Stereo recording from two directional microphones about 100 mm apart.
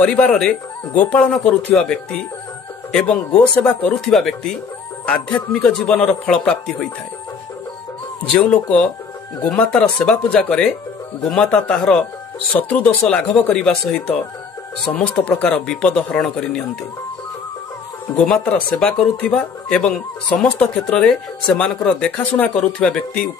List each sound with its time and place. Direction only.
0.0 s speech: 15° left (ahead or behind)
8.4 s speech: 15° left (ahead or behind)
12.8 s speech: 5° left (ahead or behind)
18.1 s speech: 10° left (ahead or behind)